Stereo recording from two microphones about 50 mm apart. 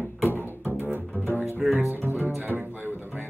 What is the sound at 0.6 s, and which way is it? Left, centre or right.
Double bass, right.